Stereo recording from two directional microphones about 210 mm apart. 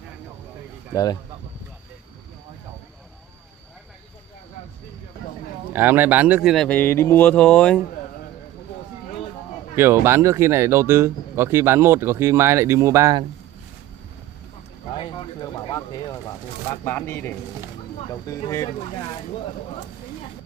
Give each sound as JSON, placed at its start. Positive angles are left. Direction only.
{"t": 5.7, "sound": "speech", "side_deg": -10}
{"t": 9.8, "sound": "speech", "side_deg": -10}
{"t": 15.0, "sound": "speech", "side_deg": 25}